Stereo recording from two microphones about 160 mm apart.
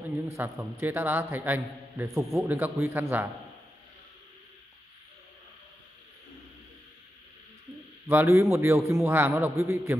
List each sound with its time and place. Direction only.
0.4 s a man's voice: 10° right (ahead or behind)
8.1 s a man's voice: 15° right (ahead or behind)